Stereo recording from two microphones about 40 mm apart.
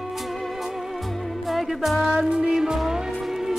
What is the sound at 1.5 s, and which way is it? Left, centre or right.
Music, centre.